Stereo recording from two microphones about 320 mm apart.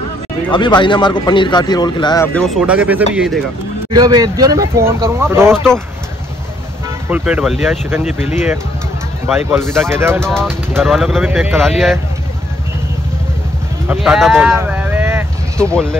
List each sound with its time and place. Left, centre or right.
0.5 s speech: centre
3.9 s speech: centre
7.1 s speech: centre
8.0 s speech: left
9.5 s speech: centre
13.8 s speech: centre